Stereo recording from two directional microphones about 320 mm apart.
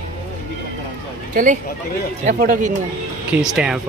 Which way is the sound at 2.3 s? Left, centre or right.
Right.